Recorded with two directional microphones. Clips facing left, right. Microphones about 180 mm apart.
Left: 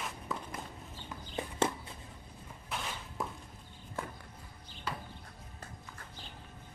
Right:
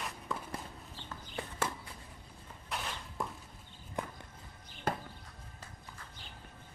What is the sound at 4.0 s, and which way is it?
Walk, 15° right (ahead or behind).